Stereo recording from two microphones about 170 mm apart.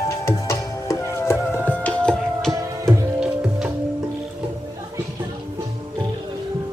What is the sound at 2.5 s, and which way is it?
Music, 20° right (ahead or behind).